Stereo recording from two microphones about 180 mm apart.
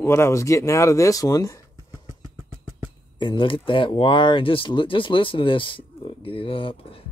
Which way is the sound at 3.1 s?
25° left (ahead or behind).